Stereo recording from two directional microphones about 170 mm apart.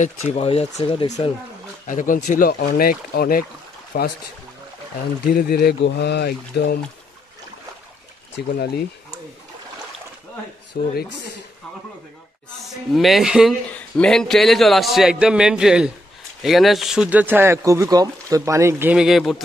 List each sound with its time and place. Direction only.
0.0 s speech: 40° left (ahead or behind)
1.9 s speech: 50° left (ahead or behind)
5.2 s speech: 65° left (ahead or behind)
10.8 s speech: 60° left (ahead or behind)
12.6 s a man's voice: centre (ahead or behind)